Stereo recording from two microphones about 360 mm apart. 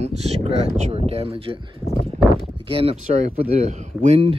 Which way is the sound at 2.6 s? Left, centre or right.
Centre.